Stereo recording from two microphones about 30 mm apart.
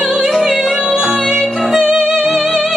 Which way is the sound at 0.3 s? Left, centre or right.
Centre.